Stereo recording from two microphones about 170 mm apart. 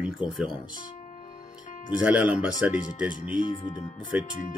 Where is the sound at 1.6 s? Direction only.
50° left (ahead or behind).